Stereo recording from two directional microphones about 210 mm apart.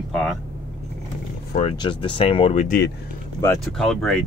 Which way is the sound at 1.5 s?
35° left (ahead or behind).